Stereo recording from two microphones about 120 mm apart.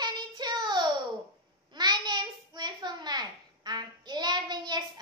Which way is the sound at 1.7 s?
35° right (ahead or behind).